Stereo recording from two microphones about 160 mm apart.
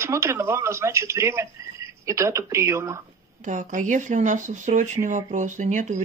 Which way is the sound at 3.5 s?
50° right (ahead or behind).